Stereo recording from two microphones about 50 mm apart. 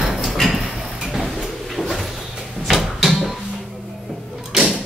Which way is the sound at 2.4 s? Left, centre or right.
Centre.